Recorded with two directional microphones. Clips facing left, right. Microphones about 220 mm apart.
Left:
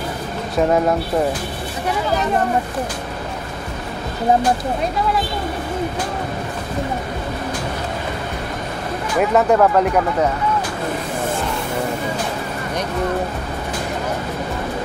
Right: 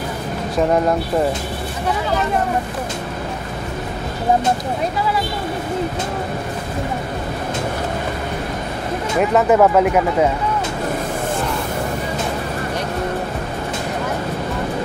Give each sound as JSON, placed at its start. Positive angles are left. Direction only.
{"t": 9.3, "sound": "speech", "side_deg": -5}